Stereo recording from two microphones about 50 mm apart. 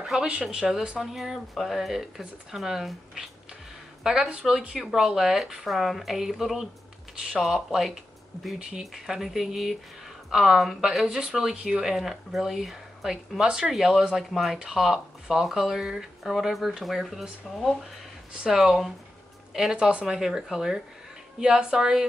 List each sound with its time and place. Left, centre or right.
0.0 s speech: centre
18.3 s speech: centre
19.7 s speech: centre